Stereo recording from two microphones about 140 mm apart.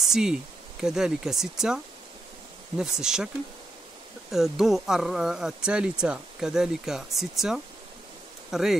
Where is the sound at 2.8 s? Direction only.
5° right (ahead or behind).